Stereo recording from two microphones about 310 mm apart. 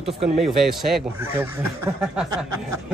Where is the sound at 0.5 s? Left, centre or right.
Centre.